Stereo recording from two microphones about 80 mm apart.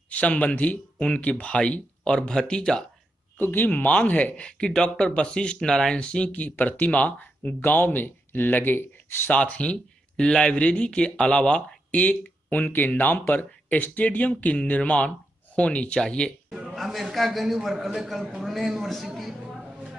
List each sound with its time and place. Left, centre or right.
0.1 s speech: centre
3.3 s speech: left
16.4 s a sound: centre
16.7 s a man's voice: centre